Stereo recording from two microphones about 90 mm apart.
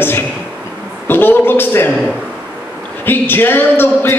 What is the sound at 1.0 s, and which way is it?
Speech, 25° left (ahead or behind).